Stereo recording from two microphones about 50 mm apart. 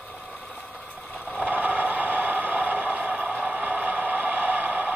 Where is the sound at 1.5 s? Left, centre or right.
Right.